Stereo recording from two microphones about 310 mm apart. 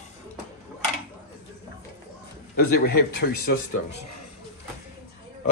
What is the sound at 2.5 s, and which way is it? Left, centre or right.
Speech, left.